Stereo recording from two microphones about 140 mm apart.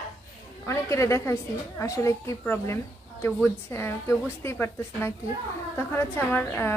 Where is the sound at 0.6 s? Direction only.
20° left (ahead or behind).